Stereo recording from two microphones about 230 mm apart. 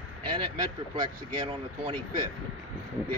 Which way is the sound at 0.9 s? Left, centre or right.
Centre.